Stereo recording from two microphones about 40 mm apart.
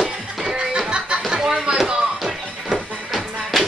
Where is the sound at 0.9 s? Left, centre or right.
Right.